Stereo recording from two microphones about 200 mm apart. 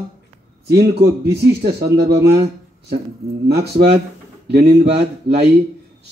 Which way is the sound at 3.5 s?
55° right (ahead or behind).